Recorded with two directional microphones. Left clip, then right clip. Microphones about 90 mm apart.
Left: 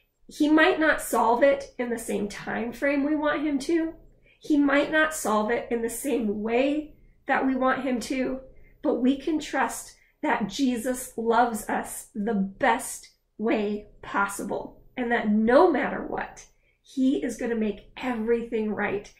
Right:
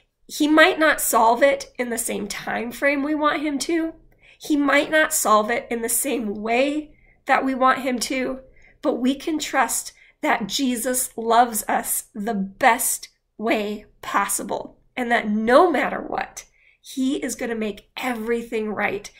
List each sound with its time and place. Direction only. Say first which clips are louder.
0.3 s a woman's voice: right 5 dB; 20° right (ahead or behind)